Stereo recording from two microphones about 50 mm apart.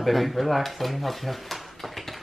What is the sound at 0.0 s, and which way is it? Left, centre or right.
Speech, centre.